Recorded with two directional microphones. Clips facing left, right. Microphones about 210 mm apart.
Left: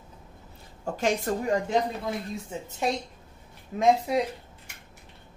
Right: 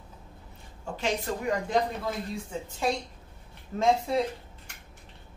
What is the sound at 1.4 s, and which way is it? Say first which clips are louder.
Speech: left 1 dB; 25° left (ahead or behind).